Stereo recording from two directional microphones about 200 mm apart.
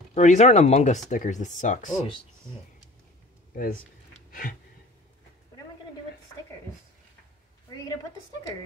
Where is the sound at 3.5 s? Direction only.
45° left (ahead or behind).